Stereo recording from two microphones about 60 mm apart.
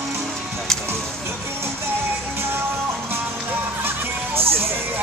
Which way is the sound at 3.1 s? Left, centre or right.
Right.